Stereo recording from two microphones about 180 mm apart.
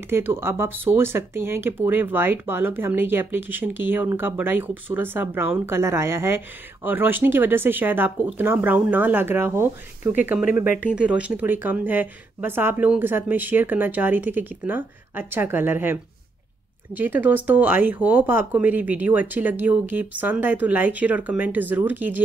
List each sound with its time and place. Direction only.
0.1 s speech: 15° right (ahead or behind)
10.6 s speech: 50° left (ahead or behind)
10.9 s speech: 5° right (ahead or behind)